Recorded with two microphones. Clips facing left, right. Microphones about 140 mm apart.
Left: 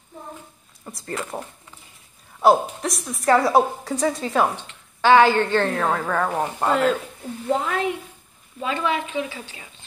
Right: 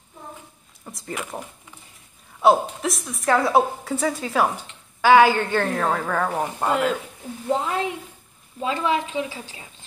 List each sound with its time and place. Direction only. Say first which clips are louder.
1.0 s speech: left 2 dB; 10° right (ahead or behind)
2.4 s a woman's voice: even; centre (ahead or behind)
5.9 s speech: left 1 dB; 5° left (ahead or behind)
6.7 s a woman's voice: left 3 dB; 10° right (ahead or behind)